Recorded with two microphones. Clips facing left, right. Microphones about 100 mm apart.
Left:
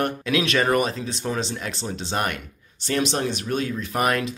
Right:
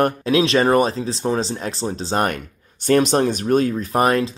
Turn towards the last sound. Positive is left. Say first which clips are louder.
# right 5 dB
turn(degrees=-30)  # may be behind; listen again after turning